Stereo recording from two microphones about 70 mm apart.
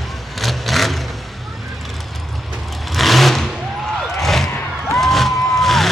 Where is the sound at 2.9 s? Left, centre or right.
Centre.